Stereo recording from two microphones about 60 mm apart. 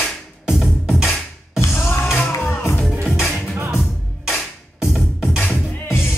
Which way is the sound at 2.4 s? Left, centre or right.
Left.